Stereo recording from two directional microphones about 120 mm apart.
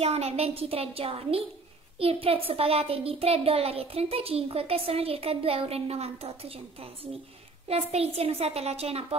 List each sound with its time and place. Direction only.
0.0 s a child's voice: 60° right (ahead or behind)